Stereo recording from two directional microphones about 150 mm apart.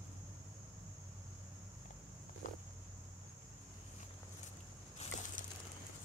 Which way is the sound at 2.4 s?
60° left (ahead or behind).